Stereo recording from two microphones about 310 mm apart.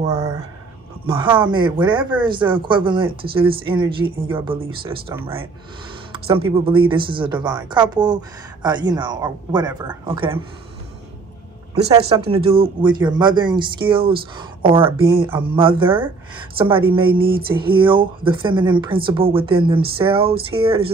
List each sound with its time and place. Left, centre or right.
0.0 s speech: right
11.8 s speech: centre
17.1 s a sound: right
17.5 s speech: centre